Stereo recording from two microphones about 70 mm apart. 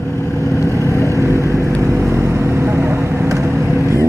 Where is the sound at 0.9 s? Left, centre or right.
Left.